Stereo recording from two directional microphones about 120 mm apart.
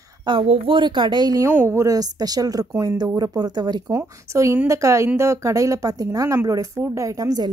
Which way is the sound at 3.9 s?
25° right (ahead or behind).